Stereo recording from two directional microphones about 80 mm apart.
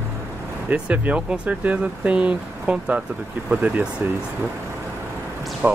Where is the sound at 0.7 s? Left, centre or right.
Centre.